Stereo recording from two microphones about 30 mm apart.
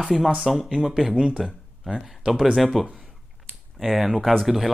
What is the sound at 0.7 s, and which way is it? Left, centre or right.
Speech, centre.